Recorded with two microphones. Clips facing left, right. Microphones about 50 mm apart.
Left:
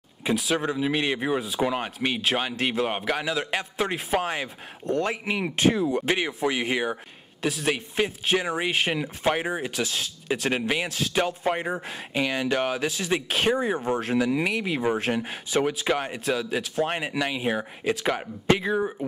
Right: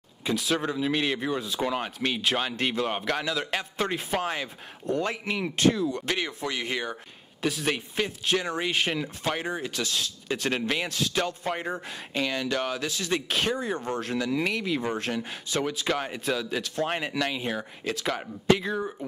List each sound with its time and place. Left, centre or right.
0.4 s speech: centre
7.4 s speech: centre